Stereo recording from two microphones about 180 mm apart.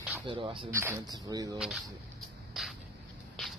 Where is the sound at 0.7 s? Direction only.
15° right (ahead or behind).